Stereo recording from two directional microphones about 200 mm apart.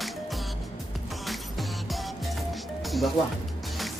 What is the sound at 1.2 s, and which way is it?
Music, centre (ahead or behind).